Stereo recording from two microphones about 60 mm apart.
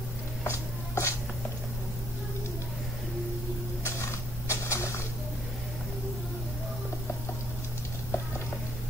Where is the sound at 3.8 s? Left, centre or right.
Left.